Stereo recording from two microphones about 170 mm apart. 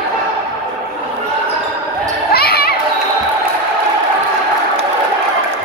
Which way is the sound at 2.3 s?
65° left (ahead or behind).